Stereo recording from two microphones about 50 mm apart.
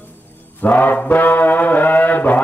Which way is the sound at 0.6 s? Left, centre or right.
Left.